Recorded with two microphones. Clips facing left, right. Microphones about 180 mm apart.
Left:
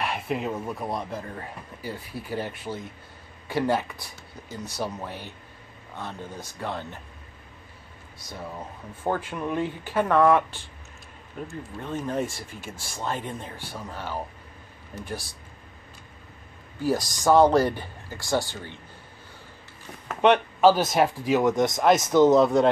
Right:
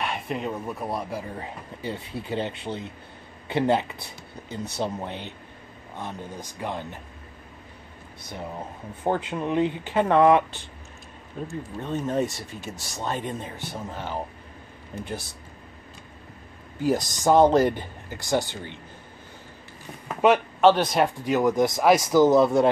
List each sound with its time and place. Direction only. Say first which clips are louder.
0.0 s speech: left 1 dB; centre (ahead or behind)
1.8 s speech: right 3 dB; 25° right (ahead or behind)
9.0 s speech: right 2 dB; 20° right (ahead or behind)
11.8 s speech: right 3 dB; 20° right (ahead or behind)
16.8 s speech: right 1 dB; 20° right (ahead or behind)
20.1 s speech: even; 5° right (ahead or behind)